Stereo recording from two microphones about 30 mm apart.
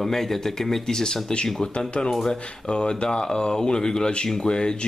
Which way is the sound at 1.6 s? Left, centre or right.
Left.